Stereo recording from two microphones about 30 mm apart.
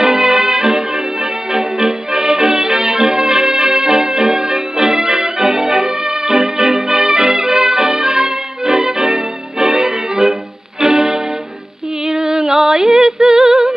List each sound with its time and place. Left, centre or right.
0.0 s music: right
12.2 s music: centre